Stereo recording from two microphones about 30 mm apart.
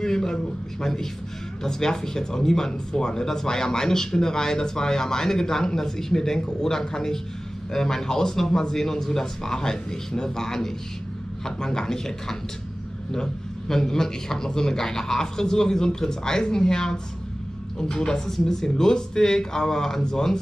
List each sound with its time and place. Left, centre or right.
0.0 s a man's voice: left
18.2 s a man's voice: centre